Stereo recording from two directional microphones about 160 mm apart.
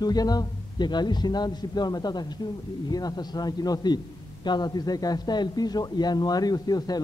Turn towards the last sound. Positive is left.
turn(degrees=25)  # may be behind; listen again after turning